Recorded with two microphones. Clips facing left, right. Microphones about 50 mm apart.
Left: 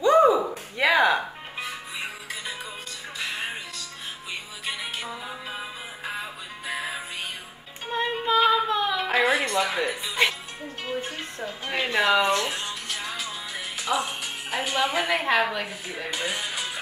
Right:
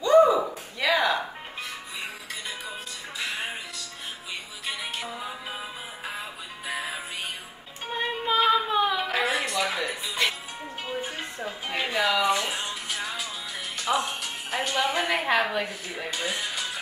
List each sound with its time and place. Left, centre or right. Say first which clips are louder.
0.0 s a sound: even; centre
4.6 s music: left 1 dB; centre
7.9 s female singing: left 3 dB; centre
9.1 s music: left 4 dB; centre